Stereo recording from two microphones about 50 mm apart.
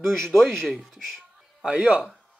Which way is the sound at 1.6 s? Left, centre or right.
Right.